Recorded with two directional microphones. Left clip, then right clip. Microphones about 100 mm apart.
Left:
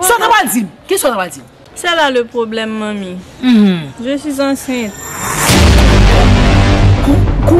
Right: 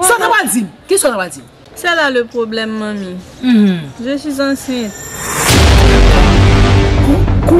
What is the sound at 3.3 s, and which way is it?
Speech, 25° left (ahead or behind).